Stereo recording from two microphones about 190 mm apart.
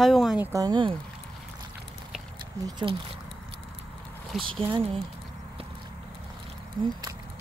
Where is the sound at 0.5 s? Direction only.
20° right (ahead or behind).